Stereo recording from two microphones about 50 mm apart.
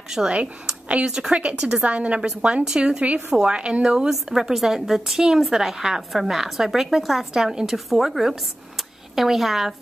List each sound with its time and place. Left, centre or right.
0.3 s a woman's voice: right
3.0 s a woman's voice: right; by 9.8 s centre